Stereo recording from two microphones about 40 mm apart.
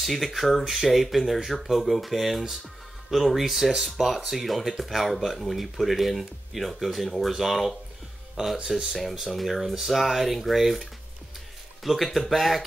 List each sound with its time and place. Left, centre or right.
0.0 s speech: centre
8.4 s speech: centre
9.3 s speech: centre